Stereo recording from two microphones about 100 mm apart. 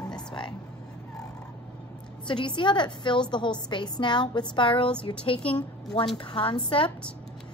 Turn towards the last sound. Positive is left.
turn(degrees=60)  # may be behind; listen again after turning